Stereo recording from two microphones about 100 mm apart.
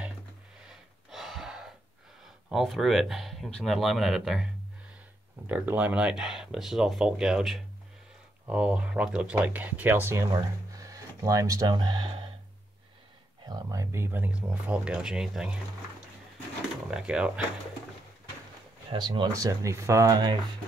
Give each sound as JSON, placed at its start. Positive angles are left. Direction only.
{"t": 0.7, "sound": "gasp", "side_deg": -5}
{"t": 2.2, "sound": "speech", "side_deg": 0}
{"t": 5.5, "sound": "speech", "side_deg": -15}
{"t": 10.3, "sound": "speech", "side_deg": -35}
{"t": 13.5, "sound": "speech", "side_deg": -40}
{"t": 13.9, "sound": "speech", "side_deg": -20}
{"t": 16.9, "sound": "speech", "side_deg": -10}
{"t": 18.9, "sound": "speech", "side_deg": -50}
{"t": 19.3, "sound": "speech", "side_deg": -35}